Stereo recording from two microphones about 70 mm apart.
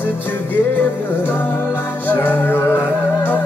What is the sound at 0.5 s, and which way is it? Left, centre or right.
Music, left.